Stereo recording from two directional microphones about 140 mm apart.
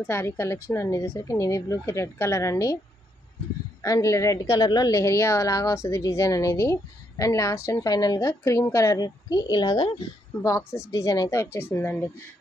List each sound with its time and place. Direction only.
0.0 s a woman's voice: 20° left (ahead or behind)
3.8 s a woman's voice: 25° left (ahead or behind)
10.4 s a woman's voice: 20° left (ahead or behind)